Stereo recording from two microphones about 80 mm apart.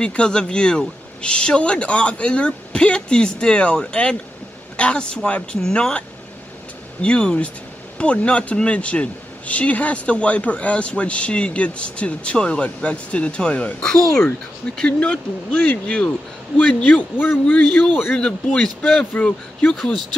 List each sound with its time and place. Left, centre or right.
0.0 s a man's voice: centre